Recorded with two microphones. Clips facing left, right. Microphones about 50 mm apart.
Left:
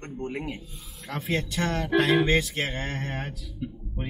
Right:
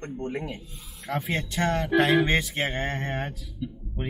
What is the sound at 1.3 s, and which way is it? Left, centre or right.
Speech, right.